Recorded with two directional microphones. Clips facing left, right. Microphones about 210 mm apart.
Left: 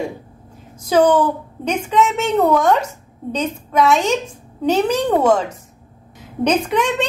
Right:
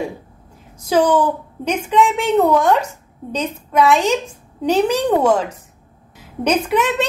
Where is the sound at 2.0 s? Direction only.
10° right (ahead or behind).